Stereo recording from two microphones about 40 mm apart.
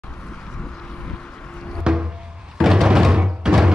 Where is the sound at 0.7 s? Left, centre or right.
Left.